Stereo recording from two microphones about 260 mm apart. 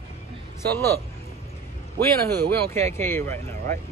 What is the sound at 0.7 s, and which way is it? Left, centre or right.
Speech, centre.